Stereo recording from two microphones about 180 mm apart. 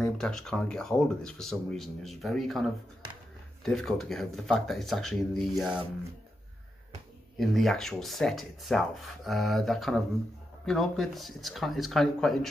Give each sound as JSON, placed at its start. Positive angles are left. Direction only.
{"t": 0.2, "sound": "speech", "side_deg": 5}
{"t": 7.3, "sound": "speech", "side_deg": 0}